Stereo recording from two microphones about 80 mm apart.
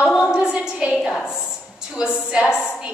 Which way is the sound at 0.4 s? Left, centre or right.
Centre.